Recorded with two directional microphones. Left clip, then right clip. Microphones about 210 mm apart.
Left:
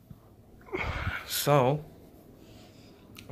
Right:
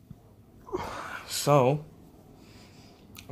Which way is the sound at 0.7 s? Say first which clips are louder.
Left 1 dB; 10° left (ahead or behind).